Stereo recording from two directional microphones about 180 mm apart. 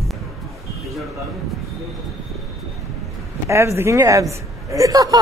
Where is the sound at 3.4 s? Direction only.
15° right (ahead or behind).